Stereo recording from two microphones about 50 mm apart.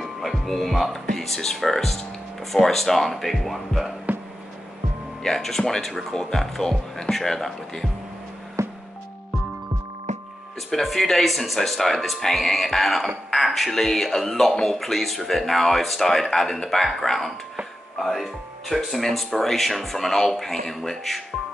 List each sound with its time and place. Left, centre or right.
0.0 s speech: centre
5.2 s speech: centre
8.6 s music: right
10.7 s speech: centre